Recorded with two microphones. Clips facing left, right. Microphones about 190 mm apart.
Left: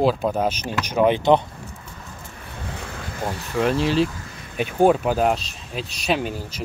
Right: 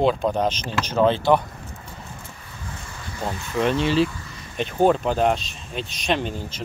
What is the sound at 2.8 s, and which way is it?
Vehicle, 65° left (ahead or behind).